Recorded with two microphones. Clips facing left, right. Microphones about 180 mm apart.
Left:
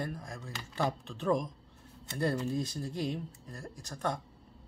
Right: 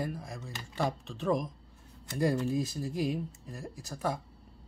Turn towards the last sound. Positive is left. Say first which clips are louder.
# right 1 dB
turn(degrees=-5)  # may be behind; listen again after turning